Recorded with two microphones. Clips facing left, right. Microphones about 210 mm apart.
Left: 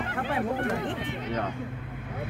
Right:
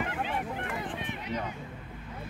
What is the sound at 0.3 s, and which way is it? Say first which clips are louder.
Speech: left 7 dB; 80° left.